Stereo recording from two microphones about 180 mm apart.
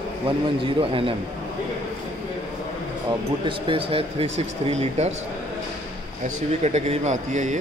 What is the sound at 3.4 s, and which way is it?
Speech, 30° right (ahead or behind).